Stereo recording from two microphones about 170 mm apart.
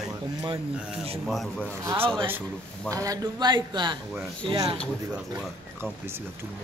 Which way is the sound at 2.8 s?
20° right (ahead or behind).